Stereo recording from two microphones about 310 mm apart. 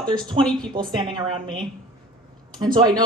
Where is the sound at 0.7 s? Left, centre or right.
Centre.